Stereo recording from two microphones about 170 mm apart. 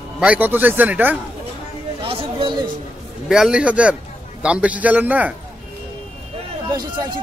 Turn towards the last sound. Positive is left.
turn(degrees=-25)  # may be behind; listen again after turning